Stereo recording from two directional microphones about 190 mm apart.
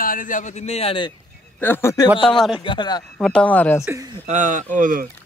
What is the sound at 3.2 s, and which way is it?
Speech, 5° left (ahead or behind).